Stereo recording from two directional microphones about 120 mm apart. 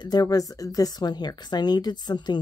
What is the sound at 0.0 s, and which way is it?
A woman's voice, 35° left (ahead or behind).